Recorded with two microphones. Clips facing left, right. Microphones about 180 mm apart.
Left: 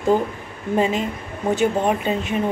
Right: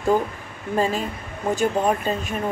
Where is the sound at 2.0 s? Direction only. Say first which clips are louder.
Left 3 dB; 20° left (ahead or behind).